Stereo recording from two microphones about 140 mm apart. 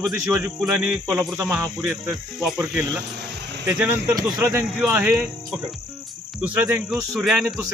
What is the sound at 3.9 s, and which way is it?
Speech, 25° right (ahead or behind).